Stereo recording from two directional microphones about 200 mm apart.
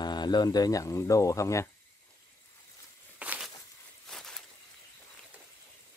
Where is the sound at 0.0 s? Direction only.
20° left (ahead or behind).